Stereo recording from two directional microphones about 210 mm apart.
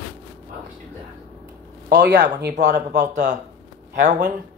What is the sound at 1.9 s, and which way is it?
Speech, 55° right (ahead or behind).